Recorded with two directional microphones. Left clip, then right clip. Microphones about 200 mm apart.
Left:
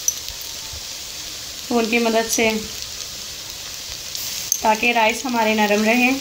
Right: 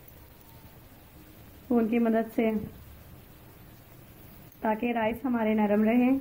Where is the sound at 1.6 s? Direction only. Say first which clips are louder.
Left 8 dB; 15° left (ahead or behind).